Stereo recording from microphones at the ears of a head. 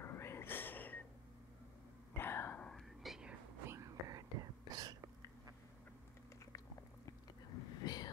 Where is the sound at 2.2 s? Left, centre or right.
Left.